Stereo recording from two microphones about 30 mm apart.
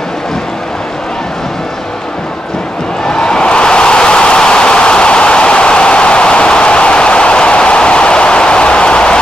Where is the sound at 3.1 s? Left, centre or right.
Left.